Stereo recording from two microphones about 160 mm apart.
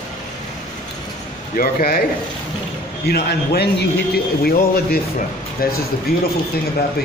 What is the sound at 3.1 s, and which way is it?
Speech, 85° left.